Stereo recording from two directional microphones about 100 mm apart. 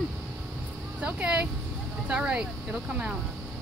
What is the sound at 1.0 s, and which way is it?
Speech, 10° right (ahead or behind).